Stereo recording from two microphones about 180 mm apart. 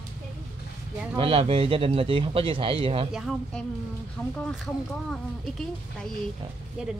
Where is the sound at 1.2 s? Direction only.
30° right (ahead or behind).